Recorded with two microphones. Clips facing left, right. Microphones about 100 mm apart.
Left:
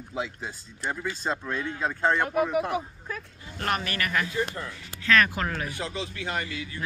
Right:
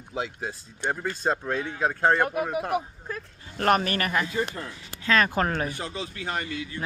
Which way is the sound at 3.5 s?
45° right (ahead or behind).